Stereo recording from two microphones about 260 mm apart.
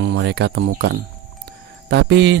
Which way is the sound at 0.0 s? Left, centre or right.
Right.